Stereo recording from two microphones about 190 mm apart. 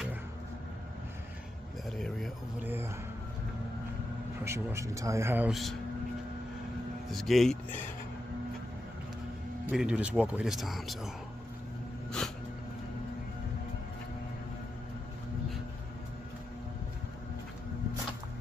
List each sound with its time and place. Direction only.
1.9 s speech: centre (ahead or behind)
2.6 s speech: 10° right (ahead or behind)
4.5 s speech: 15° right (ahead or behind)
5.5 s speech: centre (ahead or behind)
7.1 s speech: centre (ahead or behind)
9.7 s speech: 5° right (ahead or behind)